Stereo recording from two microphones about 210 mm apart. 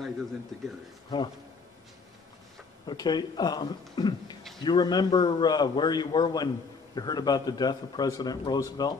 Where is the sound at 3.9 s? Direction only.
20° left (ahead or behind).